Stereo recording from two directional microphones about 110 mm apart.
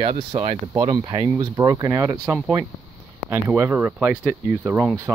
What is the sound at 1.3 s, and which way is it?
Speech, 35° right (ahead or behind).